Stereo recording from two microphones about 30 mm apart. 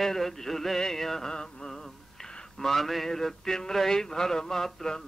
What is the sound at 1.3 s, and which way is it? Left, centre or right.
Mantra, left.